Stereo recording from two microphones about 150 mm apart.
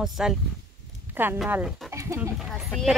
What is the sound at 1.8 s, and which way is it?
Speech, 20° right (ahead or behind).